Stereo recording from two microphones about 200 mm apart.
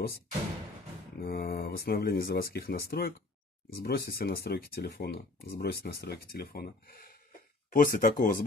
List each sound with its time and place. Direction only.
1.2 s speech: 50° left (ahead or behind)